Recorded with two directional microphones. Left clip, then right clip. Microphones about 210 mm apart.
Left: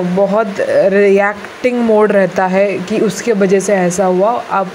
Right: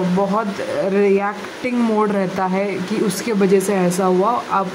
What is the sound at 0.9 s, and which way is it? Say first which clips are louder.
Speech: left 6 dB; 20° left (ahead or behind).